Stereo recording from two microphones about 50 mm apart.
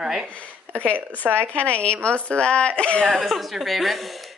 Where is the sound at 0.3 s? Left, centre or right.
Left.